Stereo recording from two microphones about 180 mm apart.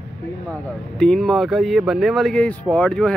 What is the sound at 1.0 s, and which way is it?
Speech, centre (ahead or behind).